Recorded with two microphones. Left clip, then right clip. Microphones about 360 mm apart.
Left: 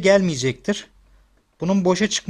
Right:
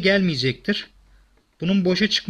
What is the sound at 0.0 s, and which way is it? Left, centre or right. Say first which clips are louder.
Speech: left 3 dB; centre.